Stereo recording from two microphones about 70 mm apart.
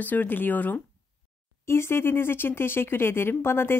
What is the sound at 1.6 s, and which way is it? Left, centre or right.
A woman's voice, left.